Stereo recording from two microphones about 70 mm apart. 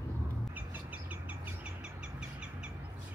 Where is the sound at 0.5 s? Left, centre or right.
Right.